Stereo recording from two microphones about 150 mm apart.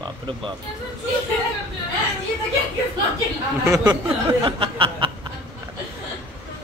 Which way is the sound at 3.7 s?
20° right (ahead or behind).